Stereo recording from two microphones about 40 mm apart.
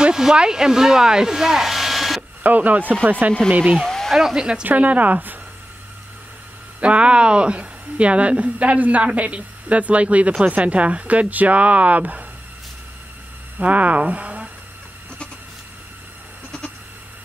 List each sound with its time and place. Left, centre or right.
0.0 s speech: centre
2.4 s speech: right
3.7 s a sound: centre
4.1 s speech: centre
4.4 s speech: right
4.6 s speech: right
6.8 s speech: right
13.6 s speech: right